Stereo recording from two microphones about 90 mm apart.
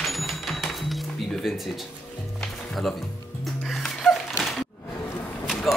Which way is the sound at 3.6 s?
5° left (ahead or behind).